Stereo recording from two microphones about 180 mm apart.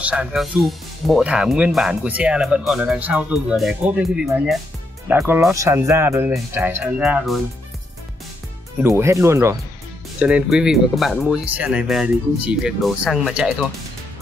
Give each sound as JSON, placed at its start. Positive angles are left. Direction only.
{"t": 0.0, "sound": "speech", "side_deg": -5}
{"t": 8.8, "sound": "speech", "side_deg": -15}